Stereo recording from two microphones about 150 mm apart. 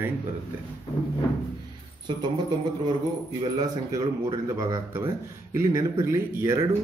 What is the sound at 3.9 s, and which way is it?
Speech, 30° right (ahead or behind).